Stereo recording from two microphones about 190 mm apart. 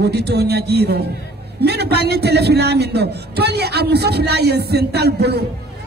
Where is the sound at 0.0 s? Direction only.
60° right (ahead or behind).